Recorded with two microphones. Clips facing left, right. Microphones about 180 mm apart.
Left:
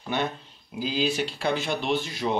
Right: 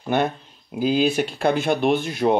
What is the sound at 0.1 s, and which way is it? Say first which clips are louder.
Speech: right 7 dB; 55° right (ahead or behind).